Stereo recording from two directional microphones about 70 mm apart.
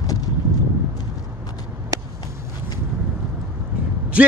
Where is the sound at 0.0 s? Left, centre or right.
Left.